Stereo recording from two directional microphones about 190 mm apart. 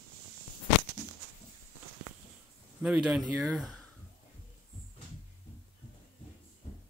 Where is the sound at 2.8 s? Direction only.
5° right (ahead or behind).